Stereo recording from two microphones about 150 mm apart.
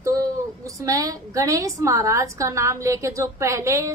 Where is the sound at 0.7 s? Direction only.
20° right (ahead or behind).